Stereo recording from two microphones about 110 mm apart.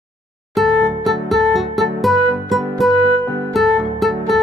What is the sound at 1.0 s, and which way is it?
Music, centre (ahead or behind).